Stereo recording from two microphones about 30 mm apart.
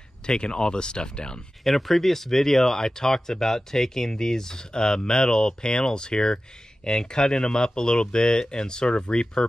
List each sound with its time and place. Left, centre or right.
0.3 s speech: left
1.6 s speech: centre; by 9.3 s left